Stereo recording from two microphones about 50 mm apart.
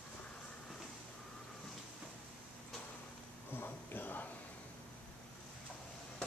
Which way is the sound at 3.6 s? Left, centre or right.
Left.